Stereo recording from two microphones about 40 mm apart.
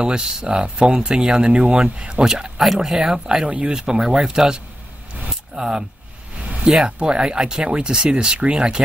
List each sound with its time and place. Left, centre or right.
0.0 s speech: right
2.6 s speech: centre
3.4 s speech: right
3.7 s speech: centre